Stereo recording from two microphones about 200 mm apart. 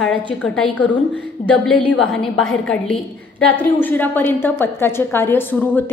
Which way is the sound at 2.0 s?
90° left.